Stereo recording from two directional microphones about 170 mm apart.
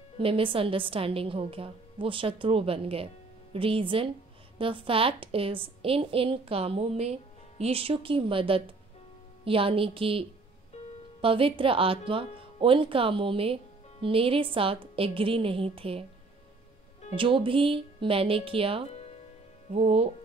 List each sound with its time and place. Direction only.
0.2 s a woman's voice: 30° right (ahead or behind)
17.1 s a woman's voice: 30° right (ahead or behind)